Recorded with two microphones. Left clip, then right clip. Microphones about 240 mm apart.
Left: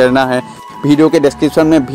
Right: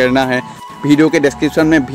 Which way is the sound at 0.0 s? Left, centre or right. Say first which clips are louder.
Left 3 dB; centre.